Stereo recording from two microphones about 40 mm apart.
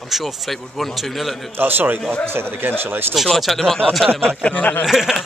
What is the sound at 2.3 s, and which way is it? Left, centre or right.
Speech, right.